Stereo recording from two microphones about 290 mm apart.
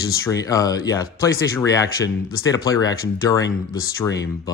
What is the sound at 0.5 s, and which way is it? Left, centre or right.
Speech, centre.